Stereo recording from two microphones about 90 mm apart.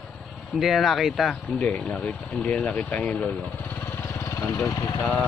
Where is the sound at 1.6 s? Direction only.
15° left (ahead or behind).